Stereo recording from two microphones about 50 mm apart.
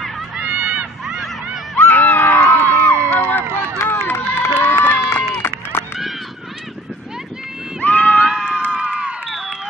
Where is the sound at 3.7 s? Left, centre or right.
Left.